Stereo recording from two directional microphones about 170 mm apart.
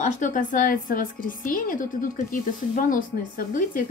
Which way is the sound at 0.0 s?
45° left (ahead or behind).